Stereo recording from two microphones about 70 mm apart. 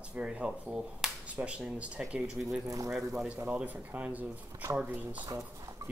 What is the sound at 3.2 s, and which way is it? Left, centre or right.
Speech, right.